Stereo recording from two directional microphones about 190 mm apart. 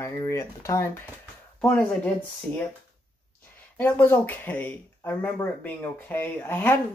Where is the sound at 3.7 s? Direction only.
10° left (ahead or behind).